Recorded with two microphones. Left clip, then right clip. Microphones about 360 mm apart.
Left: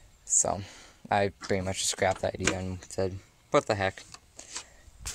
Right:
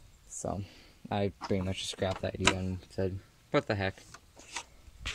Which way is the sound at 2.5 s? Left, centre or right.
Left.